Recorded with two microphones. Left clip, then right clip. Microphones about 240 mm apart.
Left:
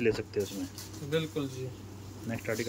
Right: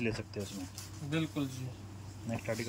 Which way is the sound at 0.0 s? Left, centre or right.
Centre.